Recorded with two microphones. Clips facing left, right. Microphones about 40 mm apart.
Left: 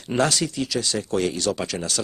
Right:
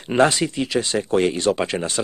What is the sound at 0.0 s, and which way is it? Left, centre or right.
Speech, right.